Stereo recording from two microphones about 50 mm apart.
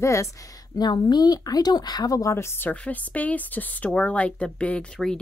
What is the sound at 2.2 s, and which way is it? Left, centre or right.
Speech, left.